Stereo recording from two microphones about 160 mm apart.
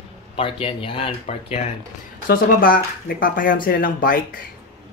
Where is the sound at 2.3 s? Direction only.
65° left (ahead or behind).